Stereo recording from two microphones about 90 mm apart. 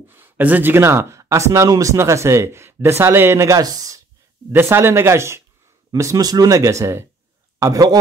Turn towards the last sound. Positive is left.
turn(degrees=-40)  # may be behind; listen again after turning